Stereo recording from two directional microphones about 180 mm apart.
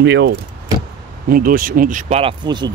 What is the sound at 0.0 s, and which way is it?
Speech, 75° right (ahead or behind).